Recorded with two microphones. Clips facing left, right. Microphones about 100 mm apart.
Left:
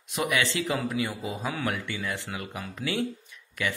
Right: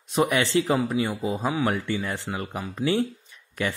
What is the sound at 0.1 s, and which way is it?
Speech, 30° right (ahead or behind).